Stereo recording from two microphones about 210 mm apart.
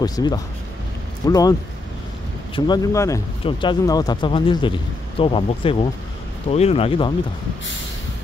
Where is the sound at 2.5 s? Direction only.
20° left (ahead or behind).